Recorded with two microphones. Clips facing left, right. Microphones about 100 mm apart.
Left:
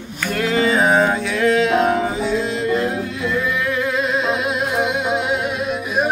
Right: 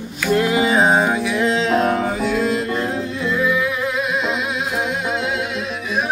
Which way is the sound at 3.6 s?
10° right (ahead or behind).